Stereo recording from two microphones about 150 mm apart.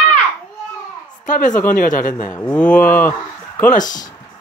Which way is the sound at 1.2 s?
60° left (ahead or behind).